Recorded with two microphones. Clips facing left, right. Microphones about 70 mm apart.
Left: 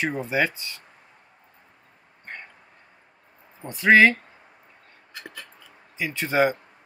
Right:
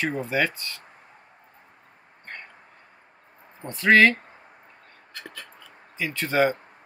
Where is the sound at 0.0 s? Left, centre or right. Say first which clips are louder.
Left 1 dB; centre.